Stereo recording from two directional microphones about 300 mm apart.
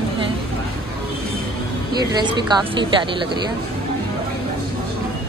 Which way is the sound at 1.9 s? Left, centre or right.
Centre.